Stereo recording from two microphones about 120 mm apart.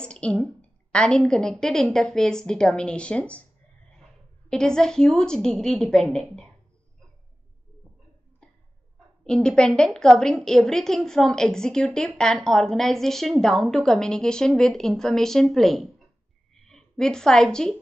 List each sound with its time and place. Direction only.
0.0 s a woman's voice: 10° left (ahead or behind)
4.5 s a woman's voice: 5° left (ahead or behind)
9.2 s a woman's voice: 5° left (ahead or behind)